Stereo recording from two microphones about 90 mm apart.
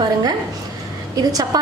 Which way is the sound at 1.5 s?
45° right (ahead or behind).